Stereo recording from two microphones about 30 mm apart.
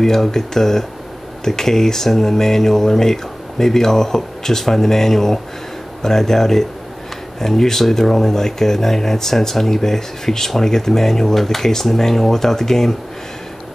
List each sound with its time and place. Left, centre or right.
0.0 s speech: centre